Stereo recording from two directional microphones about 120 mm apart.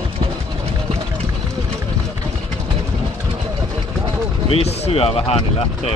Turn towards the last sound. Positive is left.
turn(degrees=55)  # may be behind; listen again after turning